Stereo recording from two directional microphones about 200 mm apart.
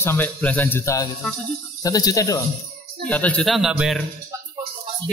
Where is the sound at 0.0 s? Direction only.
10° left (ahead or behind).